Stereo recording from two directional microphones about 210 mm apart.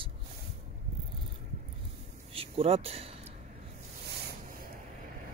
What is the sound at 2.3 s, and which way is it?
Speech, 25° right (ahead or behind).